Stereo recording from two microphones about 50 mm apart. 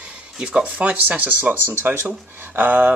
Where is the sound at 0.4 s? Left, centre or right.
Centre.